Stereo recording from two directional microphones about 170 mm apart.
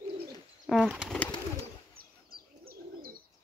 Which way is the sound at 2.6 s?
60° right (ahead or behind).